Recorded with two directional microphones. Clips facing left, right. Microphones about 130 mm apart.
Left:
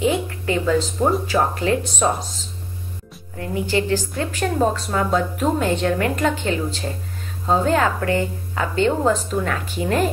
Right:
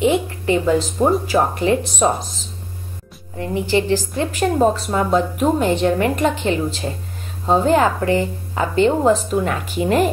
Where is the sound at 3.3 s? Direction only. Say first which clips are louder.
Right 3 dB; 25° right (ahead or behind).